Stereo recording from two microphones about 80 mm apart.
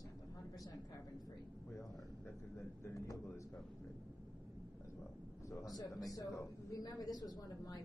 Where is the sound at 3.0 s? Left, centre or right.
Left.